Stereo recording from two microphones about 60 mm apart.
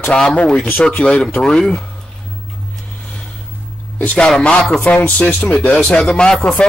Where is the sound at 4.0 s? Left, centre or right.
Left.